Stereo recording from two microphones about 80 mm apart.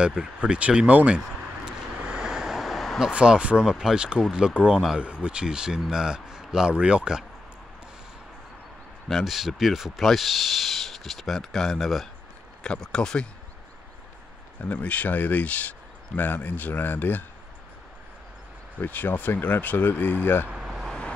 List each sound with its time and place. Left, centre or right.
0.0 s a sound: centre
3.1 s speech: centre
9.1 s speech: centre
14.6 s speech: centre
18.8 s speech: left
20.4 s vehicle: centre